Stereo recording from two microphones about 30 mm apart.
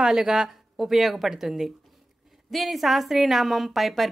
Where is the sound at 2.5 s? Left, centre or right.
Centre.